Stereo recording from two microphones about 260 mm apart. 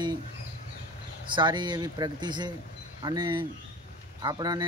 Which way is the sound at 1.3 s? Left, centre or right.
Centre.